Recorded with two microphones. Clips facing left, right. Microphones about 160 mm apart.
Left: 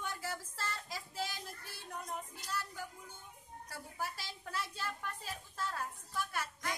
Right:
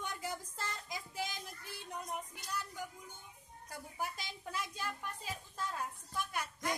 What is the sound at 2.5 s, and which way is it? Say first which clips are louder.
Music: even; 15° right (ahead or behind).